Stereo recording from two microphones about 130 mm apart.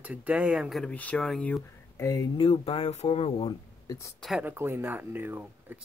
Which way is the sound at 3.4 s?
25° left (ahead or behind).